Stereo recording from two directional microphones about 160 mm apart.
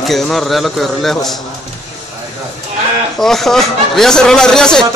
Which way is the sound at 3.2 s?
Centre (ahead or behind).